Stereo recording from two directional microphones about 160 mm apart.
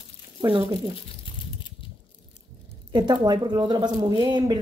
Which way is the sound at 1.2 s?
30° left (ahead or behind).